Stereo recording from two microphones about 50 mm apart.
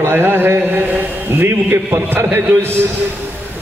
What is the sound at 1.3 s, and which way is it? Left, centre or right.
Speech, right.